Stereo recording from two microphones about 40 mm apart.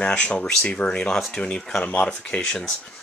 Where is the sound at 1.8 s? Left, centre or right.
Left.